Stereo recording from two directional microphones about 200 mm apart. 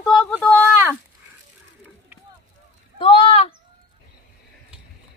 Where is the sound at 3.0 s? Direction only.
25° left (ahead or behind).